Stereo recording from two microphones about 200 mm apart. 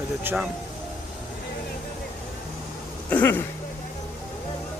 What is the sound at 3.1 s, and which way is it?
Speech, 10° left (ahead or behind).